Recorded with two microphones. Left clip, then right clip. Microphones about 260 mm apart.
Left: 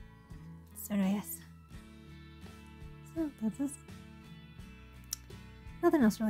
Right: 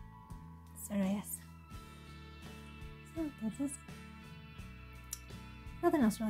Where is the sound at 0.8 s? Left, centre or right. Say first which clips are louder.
Left 3 dB; left.